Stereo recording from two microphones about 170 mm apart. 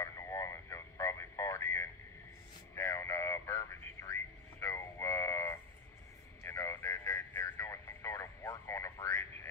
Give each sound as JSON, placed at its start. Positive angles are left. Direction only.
{"t": 0.0, "sound": "radio", "side_deg": 15}